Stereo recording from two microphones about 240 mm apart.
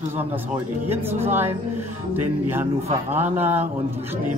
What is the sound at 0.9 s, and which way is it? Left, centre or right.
Speech, centre.